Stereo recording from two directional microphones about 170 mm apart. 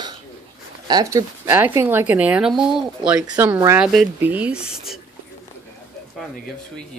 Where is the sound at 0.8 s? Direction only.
20° right (ahead or behind); by 5.0 s 5° right (ahead or behind).